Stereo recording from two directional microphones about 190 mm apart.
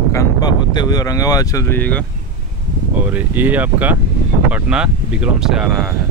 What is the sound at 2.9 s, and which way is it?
Speech, 5° right (ahead or behind).